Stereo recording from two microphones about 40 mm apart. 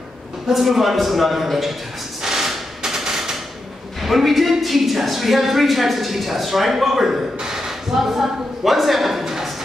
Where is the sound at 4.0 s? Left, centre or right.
Centre.